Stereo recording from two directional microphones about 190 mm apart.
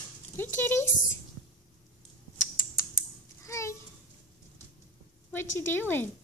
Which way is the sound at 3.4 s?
15° left (ahead or behind).